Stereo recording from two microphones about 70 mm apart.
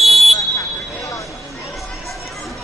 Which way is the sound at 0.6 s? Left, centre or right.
Left.